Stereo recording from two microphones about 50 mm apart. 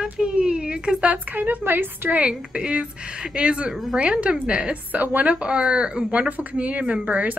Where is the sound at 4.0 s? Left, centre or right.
Right.